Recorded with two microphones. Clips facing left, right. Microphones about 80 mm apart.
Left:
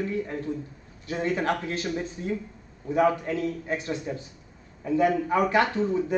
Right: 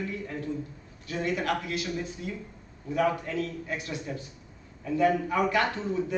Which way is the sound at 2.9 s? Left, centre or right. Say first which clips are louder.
Left 4 dB; left.